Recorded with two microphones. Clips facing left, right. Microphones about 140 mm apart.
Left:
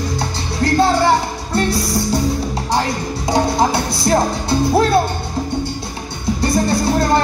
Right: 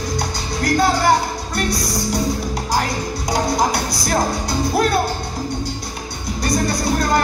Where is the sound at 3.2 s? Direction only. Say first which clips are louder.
Left 3 dB; 25° left (ahead or behind).